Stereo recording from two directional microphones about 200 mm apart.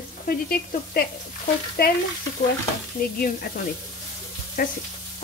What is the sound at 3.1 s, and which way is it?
Speech, 45° left (ahead or behind).